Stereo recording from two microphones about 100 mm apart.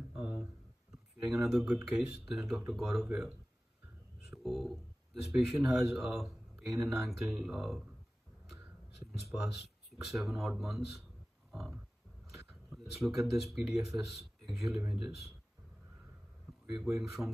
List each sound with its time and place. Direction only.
0.1 s a sound: 5° right (ahead or behind)
1.2 s speech: 5° right (ahead or behind)
3.1 s speech: 10° right (ahead or behind)
4.4 s speech: centre (ahead or behind)
10.0 s speech: 5° right (ahead or behind)
11.5 s a sound: centre (ahead or behind)
12.6 s speech: 5° right (ahead or behind)
16.8 s speech: centre (ahead or behind)